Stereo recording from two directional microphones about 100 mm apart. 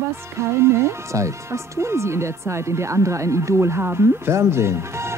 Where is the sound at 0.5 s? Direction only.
25° right (ahead or behind).